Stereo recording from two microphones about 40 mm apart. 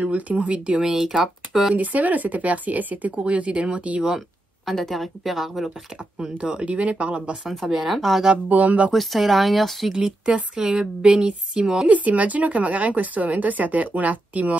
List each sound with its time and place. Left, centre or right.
0.0 s speech: right
0.9 s speech: centre
1.8 s speech: right
4.6 s a woman's voice: centre
6.3 s speech: right
7.4 s a woman's voice: centre
8.5 s speech: right
8.9 s a woman's voice: centre
10.2 s a woman's voice: right
11.9 s speech: right